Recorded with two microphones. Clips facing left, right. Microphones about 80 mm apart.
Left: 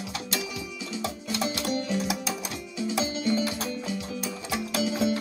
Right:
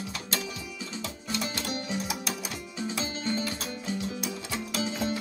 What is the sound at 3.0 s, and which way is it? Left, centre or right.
Music, right.